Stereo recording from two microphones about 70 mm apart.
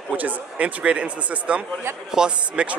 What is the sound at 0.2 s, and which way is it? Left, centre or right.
Speech, centre.